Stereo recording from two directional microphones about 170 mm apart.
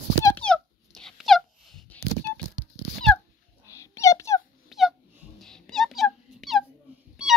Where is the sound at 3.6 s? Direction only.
20° left (ahead or behind).